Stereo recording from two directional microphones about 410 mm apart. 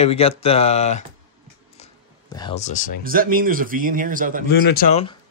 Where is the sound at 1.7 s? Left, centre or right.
Centre.